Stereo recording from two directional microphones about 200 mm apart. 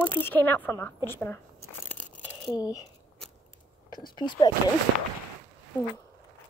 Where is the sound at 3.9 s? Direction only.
20° left (ahead or behind).